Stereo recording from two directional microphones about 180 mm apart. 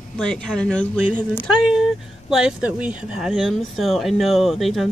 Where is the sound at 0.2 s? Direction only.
5° left (ahead or behind).